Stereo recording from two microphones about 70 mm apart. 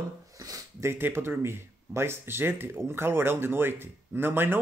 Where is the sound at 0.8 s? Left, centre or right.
Right.